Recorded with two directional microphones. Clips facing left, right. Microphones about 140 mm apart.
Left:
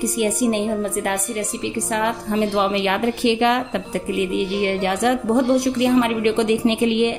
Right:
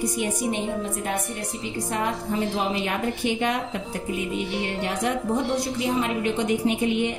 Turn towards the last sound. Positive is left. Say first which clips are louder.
# left 5 dB
turn(degrees=80)